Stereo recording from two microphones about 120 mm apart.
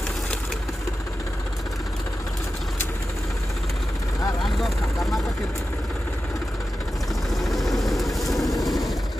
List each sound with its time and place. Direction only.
4.4 s speech: centre (ahead or behind)
7.2 s vehicle: centre (ahead or behind)